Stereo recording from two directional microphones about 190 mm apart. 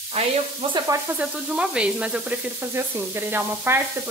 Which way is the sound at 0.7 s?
15° right (ahead or behind).